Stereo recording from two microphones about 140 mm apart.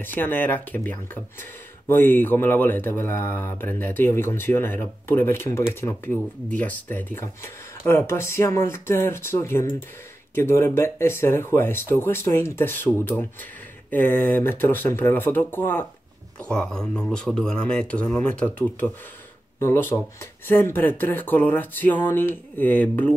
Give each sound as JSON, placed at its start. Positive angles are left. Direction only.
{"t": 0.0, "sound": "speech", "side_deg": 15}